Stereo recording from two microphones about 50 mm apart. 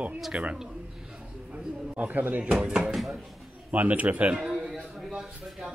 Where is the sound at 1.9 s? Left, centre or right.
Right.